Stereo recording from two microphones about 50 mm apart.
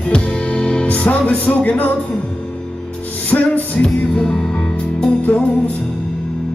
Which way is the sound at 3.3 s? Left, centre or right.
Left.